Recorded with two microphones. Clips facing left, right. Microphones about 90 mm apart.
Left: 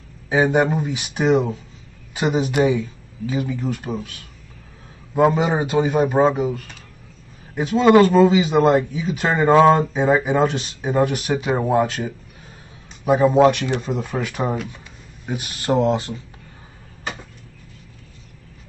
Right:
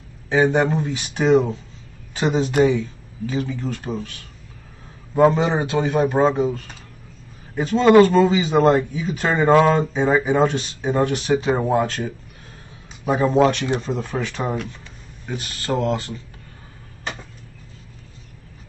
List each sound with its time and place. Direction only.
0.3 s speech: 10° left (ahead or behind)
5.1 s speech: 5° left (ahead or behind)
15.2 s speech: 15° left (ahead or behind)